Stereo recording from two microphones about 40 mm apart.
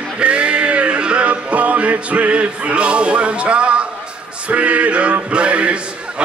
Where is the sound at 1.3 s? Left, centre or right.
Right.